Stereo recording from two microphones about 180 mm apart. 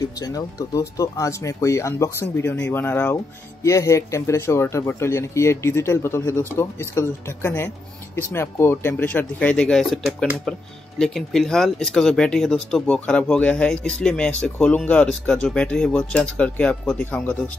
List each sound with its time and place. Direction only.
0.2 s speech: 20° left (ahead or behind)